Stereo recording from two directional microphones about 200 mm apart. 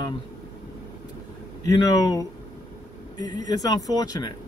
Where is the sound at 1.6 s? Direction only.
20° left (ahead or behind).